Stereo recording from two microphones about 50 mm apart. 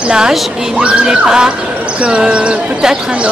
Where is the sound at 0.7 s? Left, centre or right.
Right.